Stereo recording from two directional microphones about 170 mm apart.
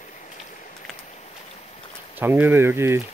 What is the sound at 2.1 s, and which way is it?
Speech, 10° right (ahead or behind).